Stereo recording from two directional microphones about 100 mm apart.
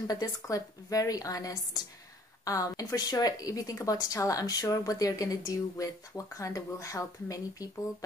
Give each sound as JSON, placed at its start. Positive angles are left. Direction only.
{"t": 0.0, "sound": "a woman's voice", "side_deg": 40}